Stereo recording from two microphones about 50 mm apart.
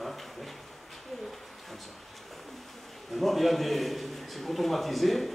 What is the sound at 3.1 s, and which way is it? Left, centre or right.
A man's voice, centre.